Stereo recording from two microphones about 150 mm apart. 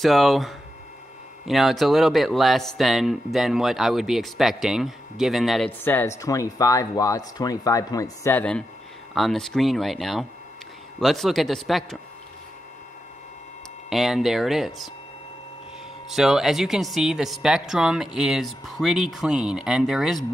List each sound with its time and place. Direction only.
0.0 s a woman's voice: centre (ahead or behind)
5.9 s a woman's voice: 15° left (ahead or behind)
13.8 s a woman's voice: centre (ahead or behind)
16.1 s a woman's voice: 5° right (ahead or behind)